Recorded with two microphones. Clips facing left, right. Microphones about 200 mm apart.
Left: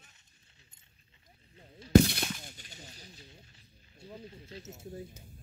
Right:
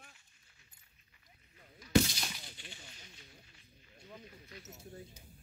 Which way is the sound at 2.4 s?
40° left (ahead or behind).